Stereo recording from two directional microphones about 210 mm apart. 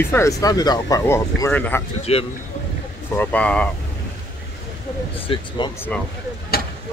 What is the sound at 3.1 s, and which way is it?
Speech, 5° left (ahead or behind).